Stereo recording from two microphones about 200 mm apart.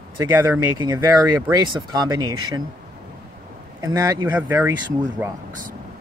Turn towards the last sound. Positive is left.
turn(degrees=-20)  # may be behind; listen again after turning